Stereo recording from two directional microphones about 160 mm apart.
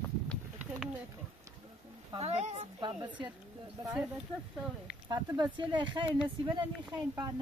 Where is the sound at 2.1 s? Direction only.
40° right (ahead or behind).